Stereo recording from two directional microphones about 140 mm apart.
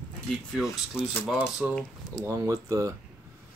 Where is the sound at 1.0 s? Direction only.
15° left (ahead or behind).